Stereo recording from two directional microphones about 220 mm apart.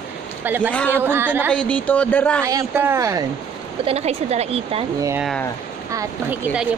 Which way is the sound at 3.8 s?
30° right (ahead or behind).